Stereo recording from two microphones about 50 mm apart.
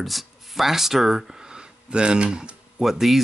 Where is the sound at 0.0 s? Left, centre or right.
Centre; by 2.5 s right.